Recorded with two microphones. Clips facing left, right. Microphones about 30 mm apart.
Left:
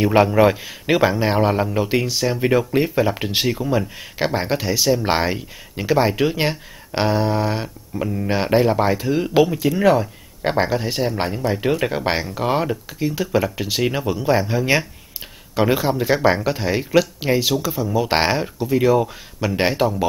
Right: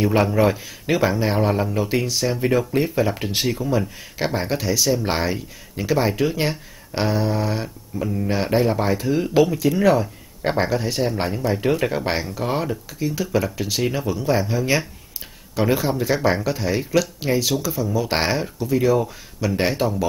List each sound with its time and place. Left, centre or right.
0.0 s a man's voice: centre